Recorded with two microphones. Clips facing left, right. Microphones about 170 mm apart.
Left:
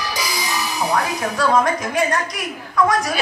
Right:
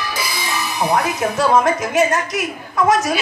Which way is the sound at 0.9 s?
20° right (ahead or behind).